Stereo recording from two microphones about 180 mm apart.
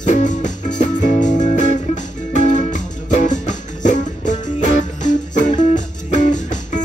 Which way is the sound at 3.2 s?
45° left (ahead or behind).